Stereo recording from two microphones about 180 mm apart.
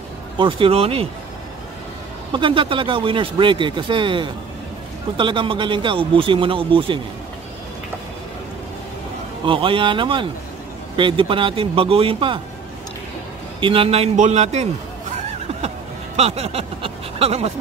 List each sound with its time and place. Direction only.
0.4 s a man's voice: 30° right (ahead or behind)
2.3 s speech: 30° right (ahead or behind)
9.5 s speech: 30° right (ahead or behind)
13.6 s a man's voice: 30° right (ahead or behind)
15.1 s snicker: 35° right (ahead or behind)
16.2 s speech: 35° right (ahead or behind)